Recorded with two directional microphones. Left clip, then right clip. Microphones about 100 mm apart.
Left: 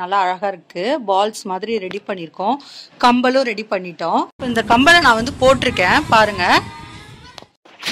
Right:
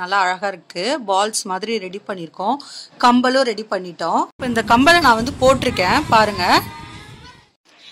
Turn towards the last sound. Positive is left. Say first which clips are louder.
# even
turn(degrees=0)  # may be behind; listen again after turning